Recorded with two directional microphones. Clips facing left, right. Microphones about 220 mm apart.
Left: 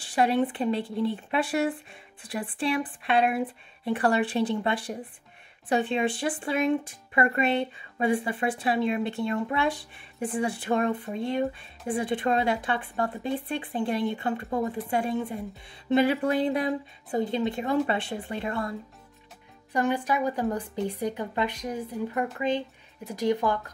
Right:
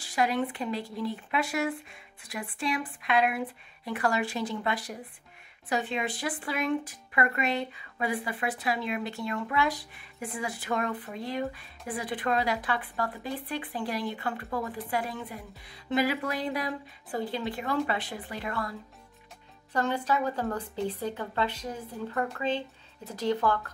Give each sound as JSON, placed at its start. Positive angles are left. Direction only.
{"t": 0.0, "sound": "a sound", "side_deg": 30}
{"t": 0.5, "sound": "speech", "side_deg": 30}
{"t": 19.7, "sound": "speech", "side_deg": 15}